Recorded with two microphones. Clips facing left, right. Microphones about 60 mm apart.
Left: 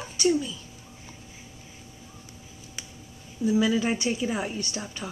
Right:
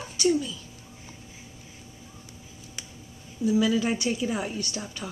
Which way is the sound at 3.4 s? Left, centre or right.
Centre.